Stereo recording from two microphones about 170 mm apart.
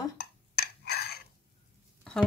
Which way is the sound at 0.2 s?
65° left (ahead or behind).